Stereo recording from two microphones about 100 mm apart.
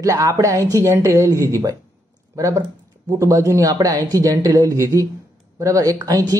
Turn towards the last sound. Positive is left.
turn(degrees=-35)  # may be behind; listen again after turning